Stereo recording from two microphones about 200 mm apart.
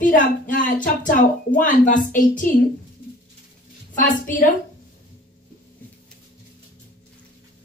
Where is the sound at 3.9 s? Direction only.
40° left (ahead or behind).